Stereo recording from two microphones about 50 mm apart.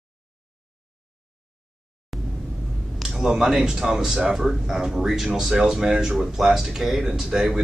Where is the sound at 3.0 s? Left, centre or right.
Centre.